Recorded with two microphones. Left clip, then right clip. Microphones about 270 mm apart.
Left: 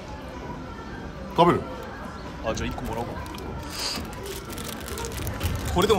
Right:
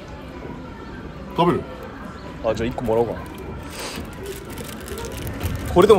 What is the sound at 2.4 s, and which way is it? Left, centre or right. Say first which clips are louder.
Speech: right 7 dB; centre.